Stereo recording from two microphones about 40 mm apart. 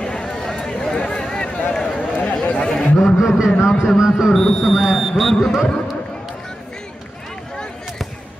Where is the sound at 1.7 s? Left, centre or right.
Left.